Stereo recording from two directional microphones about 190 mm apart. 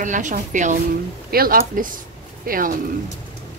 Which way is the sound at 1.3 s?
50° right (ahead or behind).